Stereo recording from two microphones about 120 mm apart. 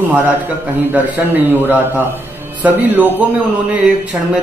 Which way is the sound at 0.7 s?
15° right (ahead or behind).